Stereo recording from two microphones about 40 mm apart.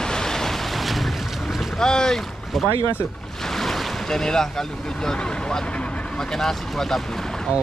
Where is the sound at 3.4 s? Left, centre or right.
Centre.